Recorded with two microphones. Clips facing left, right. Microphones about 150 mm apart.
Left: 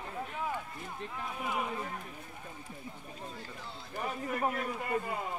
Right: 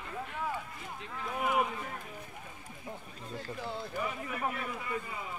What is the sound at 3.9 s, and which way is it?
A man's voice, 45° left (ahead or behind).